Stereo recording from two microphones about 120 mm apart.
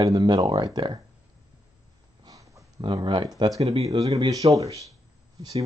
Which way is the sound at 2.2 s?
30° right (ahead or behind).